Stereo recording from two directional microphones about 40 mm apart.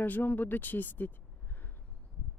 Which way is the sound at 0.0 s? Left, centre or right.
Left.